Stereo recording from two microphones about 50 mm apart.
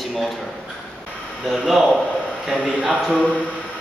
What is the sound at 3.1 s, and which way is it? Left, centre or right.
Speech, left.